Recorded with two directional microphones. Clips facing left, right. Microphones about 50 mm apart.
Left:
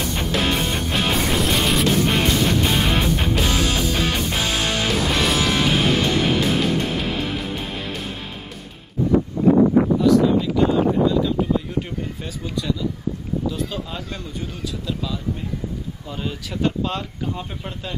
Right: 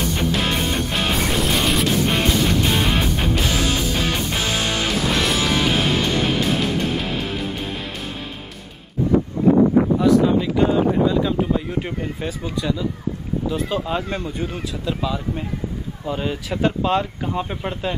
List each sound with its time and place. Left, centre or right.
0.0 s music: centre
10.0 s a sound: right
11.1 s speech: right